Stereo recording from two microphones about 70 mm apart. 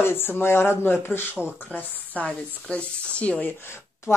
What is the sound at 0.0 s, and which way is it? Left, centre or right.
A woman's voice, left.